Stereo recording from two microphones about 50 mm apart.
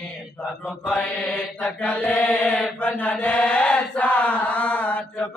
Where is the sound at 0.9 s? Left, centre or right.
Left.